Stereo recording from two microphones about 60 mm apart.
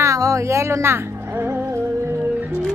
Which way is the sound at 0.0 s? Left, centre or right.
Right.